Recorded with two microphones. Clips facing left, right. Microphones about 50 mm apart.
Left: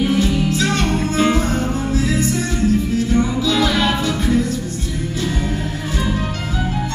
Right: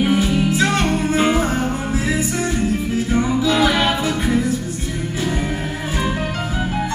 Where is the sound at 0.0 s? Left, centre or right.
Centre.